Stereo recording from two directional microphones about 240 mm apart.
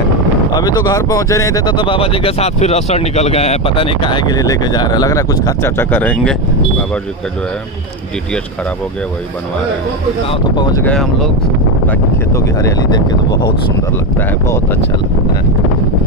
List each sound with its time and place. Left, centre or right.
0.6 s speech: centre
10.5 s speech: centre